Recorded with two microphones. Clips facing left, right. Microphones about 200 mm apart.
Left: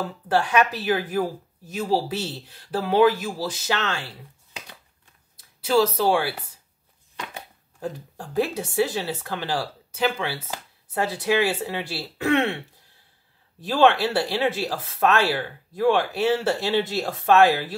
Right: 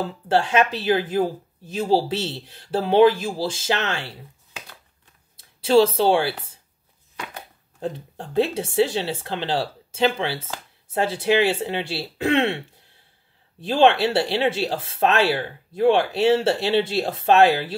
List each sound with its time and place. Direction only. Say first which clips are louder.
0.0 s speech: right 2 dB; 25° right (ahead or behind)
5.6 s speech: right 4 dB; 30° right (ahead or behind)
7.8 s speech: right 3 dB; 25° right (ahead or behind)
13.6 s speech: right 2 dB; 25° right (ahead or behind)